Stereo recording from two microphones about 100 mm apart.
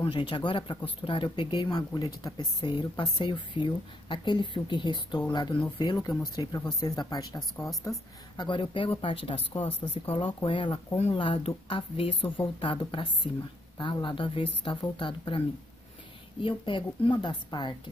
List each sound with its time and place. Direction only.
0.0 s speech: 60° left (ahead or behind); by 8.0 s 35° left (ahead or behind)
8.4 s speech: 55° left (ahead or behind)
11.0 s speech: 65° left (ahead or behind); by 17.7 s 50° left (ahead or behind)